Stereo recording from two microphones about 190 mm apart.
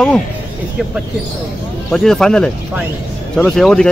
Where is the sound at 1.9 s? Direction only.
5° left (ahead or behind).